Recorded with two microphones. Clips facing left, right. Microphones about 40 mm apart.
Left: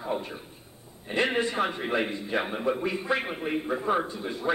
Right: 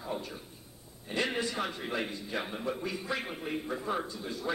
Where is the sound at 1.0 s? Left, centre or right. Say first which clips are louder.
Left 6 dB; left.